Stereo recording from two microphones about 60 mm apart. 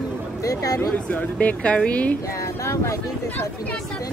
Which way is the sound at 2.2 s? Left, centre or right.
Left.